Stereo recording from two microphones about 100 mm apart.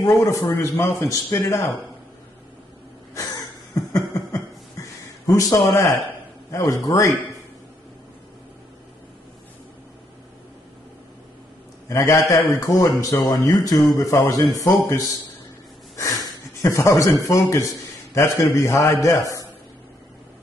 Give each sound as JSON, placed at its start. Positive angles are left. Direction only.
{"t": 0.2, "sound": "a man's voice", "side_deg": 30}
{"t": 3.2, "sound": "a sound", "side_deg": 40}
{"t": 6.5, "sound": "a man's voice", "side_deg": 35}
{"t": 11.9, "sound": "a man's voice", "side_deg": 30}